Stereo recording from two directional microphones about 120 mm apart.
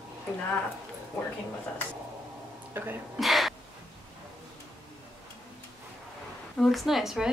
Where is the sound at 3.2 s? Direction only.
Centre (ahead or behind).